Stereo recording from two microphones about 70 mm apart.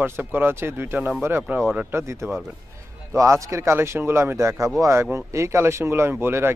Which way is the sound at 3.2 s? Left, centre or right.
Right.